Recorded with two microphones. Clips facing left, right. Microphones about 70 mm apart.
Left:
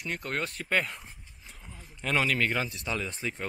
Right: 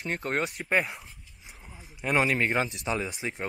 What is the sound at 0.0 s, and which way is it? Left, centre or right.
Speech, right.